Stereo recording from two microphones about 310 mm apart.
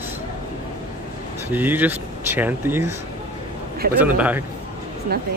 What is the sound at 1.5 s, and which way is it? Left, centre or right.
Speech, centre.